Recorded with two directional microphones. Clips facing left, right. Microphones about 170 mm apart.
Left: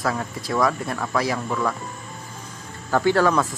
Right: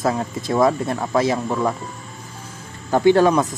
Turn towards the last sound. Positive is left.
turn(degrees=-20)  # may be behind; listen again after turning